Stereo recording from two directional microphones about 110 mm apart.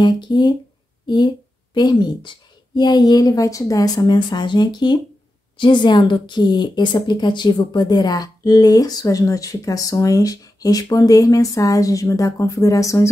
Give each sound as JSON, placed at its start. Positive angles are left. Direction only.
{"t": 0.0, "sound": "a woman's voice", "side_deg": 45}